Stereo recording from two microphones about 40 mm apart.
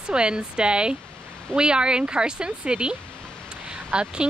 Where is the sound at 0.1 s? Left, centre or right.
Right.